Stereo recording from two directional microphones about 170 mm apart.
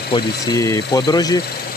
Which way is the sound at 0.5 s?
20° left (ahead or behind).